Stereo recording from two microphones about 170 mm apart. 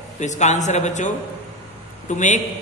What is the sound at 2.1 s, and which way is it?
Speech, 45° left (ahead or behind).